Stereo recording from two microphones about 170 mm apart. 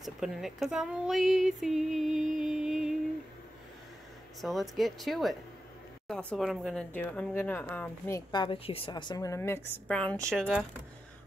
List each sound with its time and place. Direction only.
0.0 s speech: centre (ahead or behind)
4.4 s speech: centre (ahead or behind)
8.3 s a woman's voice: 30° left (ahead or behind); by 10.6 s centre (ahead or behind)